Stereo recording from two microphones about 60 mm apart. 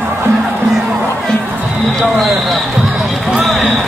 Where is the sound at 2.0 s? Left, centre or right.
Centre.